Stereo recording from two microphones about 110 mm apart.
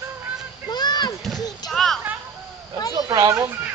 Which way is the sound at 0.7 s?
40° left (ahead or behind).